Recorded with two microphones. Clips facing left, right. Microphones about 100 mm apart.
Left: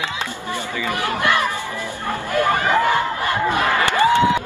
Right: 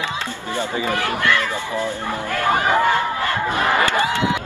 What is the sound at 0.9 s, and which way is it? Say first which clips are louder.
Chatter: left 2 dB; 20° left (ahead or behind).